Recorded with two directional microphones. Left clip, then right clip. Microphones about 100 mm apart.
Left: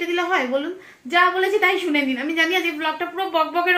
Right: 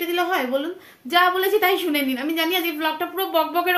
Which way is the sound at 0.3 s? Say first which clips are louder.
Left 1 dB; 20° right (ahead or behind).